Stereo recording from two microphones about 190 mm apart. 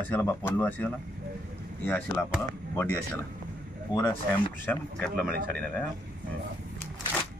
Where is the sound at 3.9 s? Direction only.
20° left (ahead or behind).